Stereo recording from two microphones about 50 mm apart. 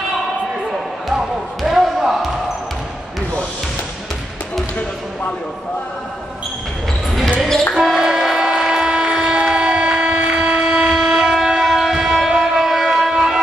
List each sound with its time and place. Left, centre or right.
0.7 s basketball bounce: centre
7.3 s basketball bounce: centre
7.8 s train: centre
12.3 s a sound: centre